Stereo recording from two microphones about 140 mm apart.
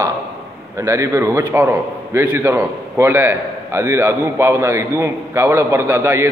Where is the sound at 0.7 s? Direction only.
20° right (ahead or behind).